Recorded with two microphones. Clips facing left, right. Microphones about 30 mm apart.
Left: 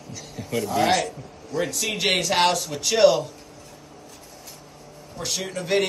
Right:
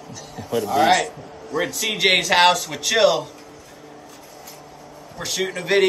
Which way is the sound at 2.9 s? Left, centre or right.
Centre.